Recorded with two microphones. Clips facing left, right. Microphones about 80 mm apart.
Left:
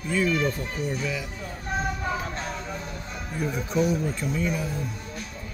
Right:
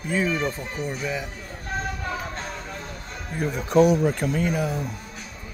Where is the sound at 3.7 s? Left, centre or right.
Right.